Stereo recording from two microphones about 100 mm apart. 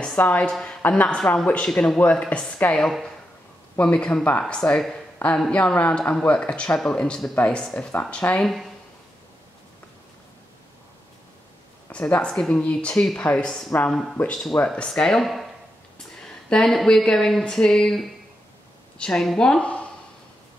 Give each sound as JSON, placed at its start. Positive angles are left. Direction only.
{"t": 0.0, "sound": "a woman's voice", "side_deg": 15}
{"t": 8.5, "sound": "speech", "side_deg": 0}
{"t": 11.9, "sound": "speech", "side_deg": 10}